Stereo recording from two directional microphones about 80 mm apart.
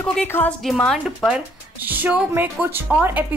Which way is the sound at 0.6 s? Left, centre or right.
Centre.